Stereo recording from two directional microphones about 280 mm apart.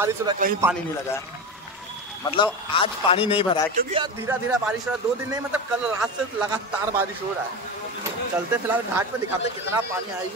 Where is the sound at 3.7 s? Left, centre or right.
Centre.